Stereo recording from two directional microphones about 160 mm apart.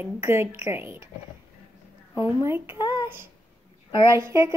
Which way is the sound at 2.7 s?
30° left (ahead or behind).